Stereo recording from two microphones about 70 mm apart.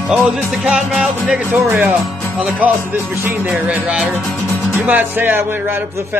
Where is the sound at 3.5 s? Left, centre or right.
Centre.